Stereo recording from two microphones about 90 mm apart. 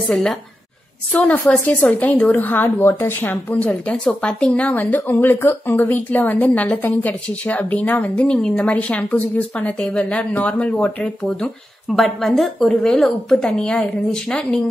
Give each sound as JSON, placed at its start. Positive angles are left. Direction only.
{"t": 0.0, "sound": "a woman's voice", "side_deg": 5}
{"t": 1.1, "sound": "a woman's voice", "side_deg": 20}